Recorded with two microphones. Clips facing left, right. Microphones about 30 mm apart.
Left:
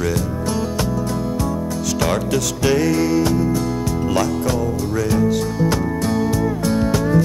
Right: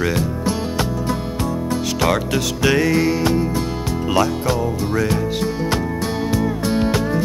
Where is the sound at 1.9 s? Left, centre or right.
Right.